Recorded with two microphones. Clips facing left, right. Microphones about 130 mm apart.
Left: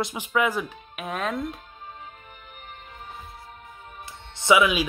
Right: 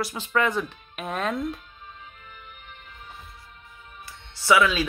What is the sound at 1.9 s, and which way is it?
Music, 40° left (ahead or behind).